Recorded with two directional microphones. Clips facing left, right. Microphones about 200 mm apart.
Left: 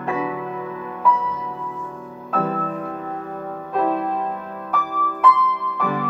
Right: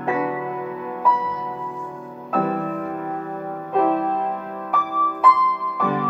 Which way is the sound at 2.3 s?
15° right (ahead or behind).